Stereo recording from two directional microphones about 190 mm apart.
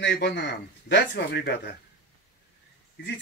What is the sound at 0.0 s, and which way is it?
Speech, 65° left (ahead or behind).